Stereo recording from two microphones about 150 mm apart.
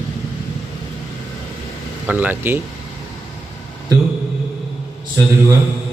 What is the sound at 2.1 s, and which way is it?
Speech, 10° right (ahead or behind).